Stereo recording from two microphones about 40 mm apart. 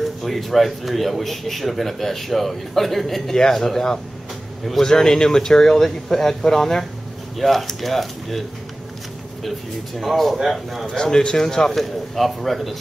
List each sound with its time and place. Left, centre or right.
0.0 s a man's voice: centre
3.3 s a man's voice: centre
9.9 s a man's voice: centre
10.9 s speech: centre